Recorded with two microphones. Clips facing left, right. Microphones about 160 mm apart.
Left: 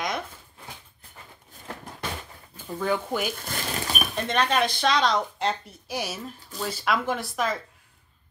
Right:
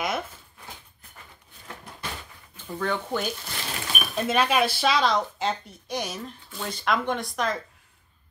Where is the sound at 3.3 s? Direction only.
50° left (ahead or behind).